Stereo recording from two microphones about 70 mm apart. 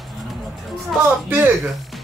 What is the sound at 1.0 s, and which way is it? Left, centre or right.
Speech, right.